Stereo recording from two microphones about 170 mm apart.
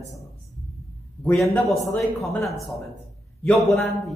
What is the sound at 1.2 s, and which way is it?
Speech, 15° left (ahead or behind).